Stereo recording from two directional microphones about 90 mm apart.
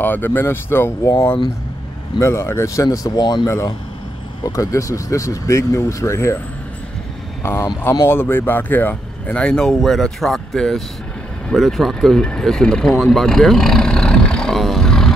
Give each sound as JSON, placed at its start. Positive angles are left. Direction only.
{"t": 0.0, "sound": "speech", "side_deg": 20}
{"t": 2.1, "sound": "speech", "side_deg": 30}
{"t": 3.2, "sound": "speech", "side_deg": 55}
{"t": 3.4, "sound": "speech", "side_deg": 35}
{"t": 7.4, "sound": "speech", "side_deg": 30}